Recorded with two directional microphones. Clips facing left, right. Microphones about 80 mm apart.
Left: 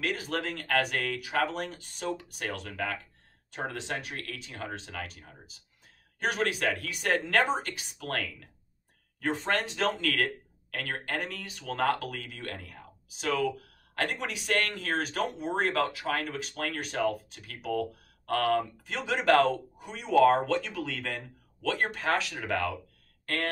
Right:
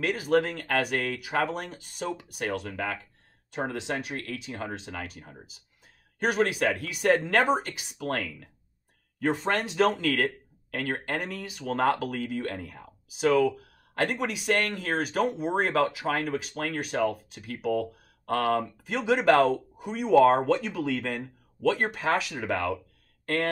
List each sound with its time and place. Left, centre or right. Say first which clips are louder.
0.0 s speech: right 7 dB; centre
9.5 s speech: right 4 dB; centre